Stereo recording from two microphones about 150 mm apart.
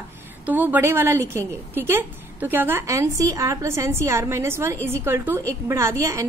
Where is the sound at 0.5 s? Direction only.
10° right (ahead or behind).